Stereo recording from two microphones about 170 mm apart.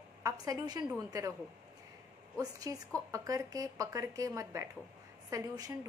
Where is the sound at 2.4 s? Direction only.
20° right (ahead or behind).